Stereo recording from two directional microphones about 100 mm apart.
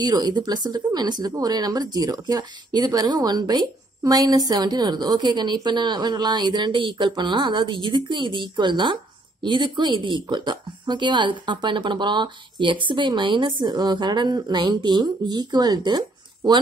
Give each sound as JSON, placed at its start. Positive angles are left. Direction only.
{"t": 0.0, "sound": "speech", "side_deg": -45}